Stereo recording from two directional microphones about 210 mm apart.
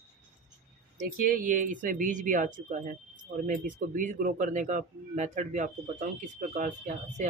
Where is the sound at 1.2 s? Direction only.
40° right (ahead or behind).